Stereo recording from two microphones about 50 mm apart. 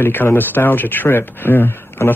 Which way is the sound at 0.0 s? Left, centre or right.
Left.